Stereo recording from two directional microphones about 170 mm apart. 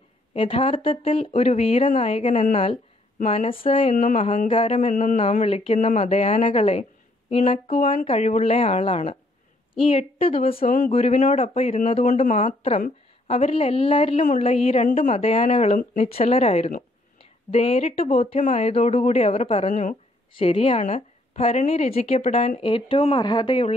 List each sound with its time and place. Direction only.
0.3 s a woman's voice: 35° left (ahead or behind)
3.9 s a woman's voice: 45° left (ahead or behind)
20.3 s a woman's voice: 35° left (ahead or behind)